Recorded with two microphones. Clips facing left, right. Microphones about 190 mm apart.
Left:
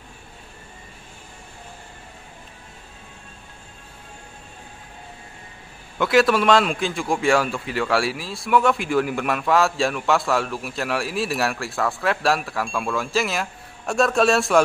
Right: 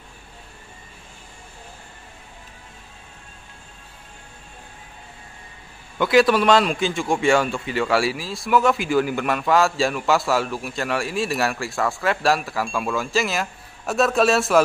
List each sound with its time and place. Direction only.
5.9 s a man's voice: centre (ahead or behind)